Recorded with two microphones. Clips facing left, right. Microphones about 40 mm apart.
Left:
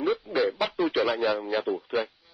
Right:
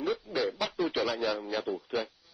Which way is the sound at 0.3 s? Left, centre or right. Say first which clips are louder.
Left 5 dB; left.